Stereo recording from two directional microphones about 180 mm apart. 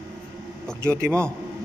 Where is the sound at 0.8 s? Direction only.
15° right (ahead or behind).